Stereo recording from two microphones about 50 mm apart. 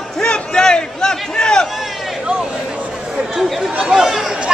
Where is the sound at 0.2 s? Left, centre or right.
Centre.